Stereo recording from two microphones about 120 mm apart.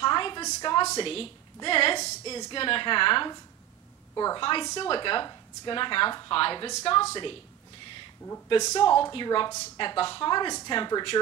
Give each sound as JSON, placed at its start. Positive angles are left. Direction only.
{"t": 0.0, "sound": "a sound", "side_deg": 40}
{"t": 1.0, "sound": "a woman's voice", "side_deg": 50}
{"t": 4.1, "sound": "a woman's voice", "side_deg": 30}
{"t": 4.4, "sound": "a woman's voice", "side_deg": 45}
{"t": 8.7, "sound": "speech", "side_deg": 35}